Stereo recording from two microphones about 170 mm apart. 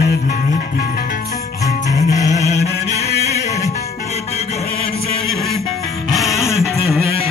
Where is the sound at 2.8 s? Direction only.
40° left (ahead or behind).